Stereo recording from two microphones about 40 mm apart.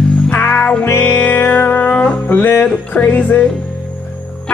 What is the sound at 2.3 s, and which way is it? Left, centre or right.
Music, left.